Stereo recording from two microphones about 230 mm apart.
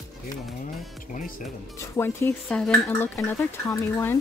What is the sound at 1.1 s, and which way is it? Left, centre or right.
Speech, left.